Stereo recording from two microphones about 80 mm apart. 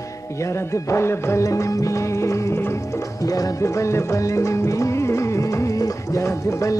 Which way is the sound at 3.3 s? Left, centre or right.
Left.